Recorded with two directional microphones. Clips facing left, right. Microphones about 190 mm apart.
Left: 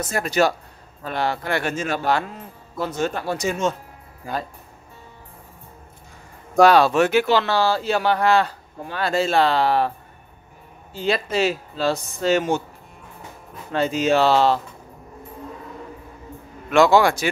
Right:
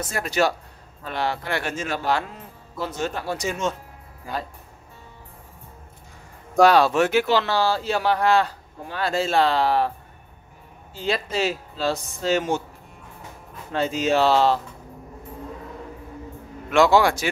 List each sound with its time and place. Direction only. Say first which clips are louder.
0.0 s speech: left 3 dB; 45° left (ahead or behind)
6.5 s speech: left 2 dB; 65° left (ahead or behind)
11.0 s speech: left 3 dB; 65° left (ahead or behind)
13.7 s speech: left 2 dB; 65° left (ahead or behind)
16.7 s speech: left 2 dB; 50° left (ahead or behind)